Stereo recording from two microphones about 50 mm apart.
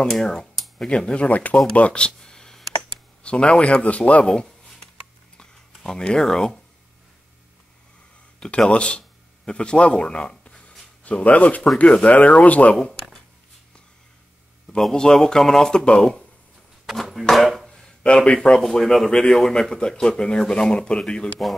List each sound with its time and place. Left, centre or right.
0.1 s speech: centre
0.8 s speech: left
1.8 s a sound: left
3.3 s speech: left
5.7 s a sound: centre
5.9 s speech: centre
8.4 s speech: centre
12.8 s speech: centre
14.8 s speech: centre
16.9 s speech: centre
17.6 s a sound: centre
18.0 s speech: left
18.6 s speech: centre; by 21.5 s left